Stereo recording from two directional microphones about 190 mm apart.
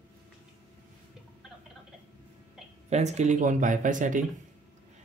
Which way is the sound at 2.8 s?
35° right (ahead or behind).